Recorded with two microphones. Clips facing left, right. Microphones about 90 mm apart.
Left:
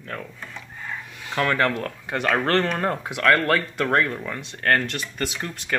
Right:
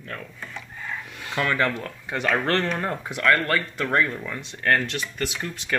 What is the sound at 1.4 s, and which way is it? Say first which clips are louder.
Speech: left 2 dB; 55° left (ahead or behind).